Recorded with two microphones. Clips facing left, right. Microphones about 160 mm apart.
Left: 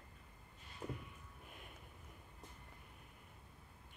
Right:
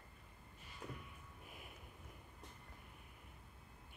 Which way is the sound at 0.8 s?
25° left (ahead or behind).